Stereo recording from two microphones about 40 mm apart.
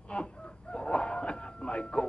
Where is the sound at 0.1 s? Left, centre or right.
Left.